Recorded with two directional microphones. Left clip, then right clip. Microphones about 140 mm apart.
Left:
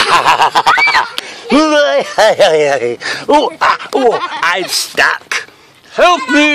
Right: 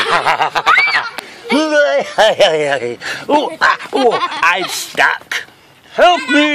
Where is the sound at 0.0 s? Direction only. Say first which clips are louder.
Left 5 dB; 45° left (ahead or behind).